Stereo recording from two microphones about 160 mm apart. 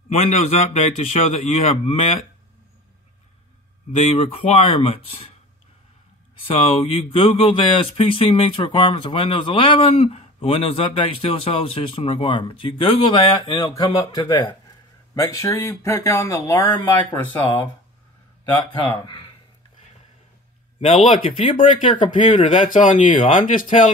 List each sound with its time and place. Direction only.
0.1 s a man's voice: 45° left (ahead or behind)
3.9 s speech: 40° left (ahead or behind)
6.4 s speech: 40° left (ahead or behind); by 17.6 s 20° left (ahead or behind)
18.8 s speech: 30° left (ahead or behind)
20.8 s speech: 35° left (ahead or behind)
23.0 s speech: 55° left (ahead or behind)